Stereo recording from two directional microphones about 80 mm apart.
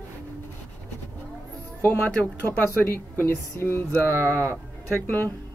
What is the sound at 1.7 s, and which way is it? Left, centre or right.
Speech, left.